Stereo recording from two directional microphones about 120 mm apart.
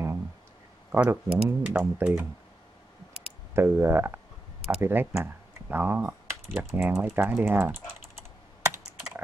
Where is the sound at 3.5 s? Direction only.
20° right (ahead or behind).